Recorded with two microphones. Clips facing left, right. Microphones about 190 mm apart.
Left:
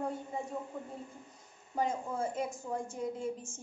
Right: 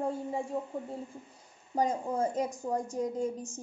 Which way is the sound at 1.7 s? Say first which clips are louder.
Right 4 dB; 40° right (ahead or behind).